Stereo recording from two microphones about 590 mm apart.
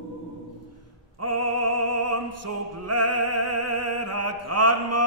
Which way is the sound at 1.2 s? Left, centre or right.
Right.